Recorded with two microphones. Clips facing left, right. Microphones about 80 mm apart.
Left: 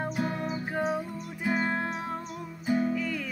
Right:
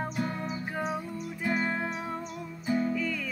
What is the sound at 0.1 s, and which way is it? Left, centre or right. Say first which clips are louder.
Music: left 2 dB; centre.